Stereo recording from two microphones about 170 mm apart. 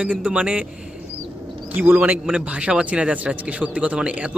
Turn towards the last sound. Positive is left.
turn(degrees=-5)  # may be behind; listen again after turning